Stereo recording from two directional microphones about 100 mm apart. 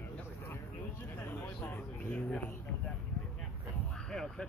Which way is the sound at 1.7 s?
15° left (ahead or behind).